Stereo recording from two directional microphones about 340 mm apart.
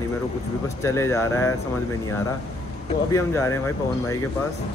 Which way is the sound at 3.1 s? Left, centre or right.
Centre.